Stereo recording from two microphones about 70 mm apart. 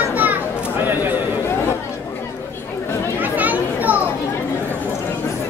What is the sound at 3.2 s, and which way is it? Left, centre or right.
Chatter, right.